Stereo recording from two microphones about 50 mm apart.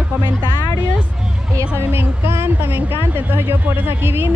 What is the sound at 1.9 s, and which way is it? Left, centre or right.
Speech, right.